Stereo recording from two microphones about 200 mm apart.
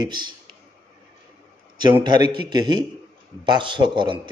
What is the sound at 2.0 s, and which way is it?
A man's voice, 25° right (ahead or behind).